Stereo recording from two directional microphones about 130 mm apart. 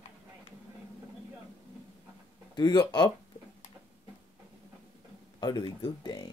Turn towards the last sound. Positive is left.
turn(degrees=35)  # may be behind; listen again after turning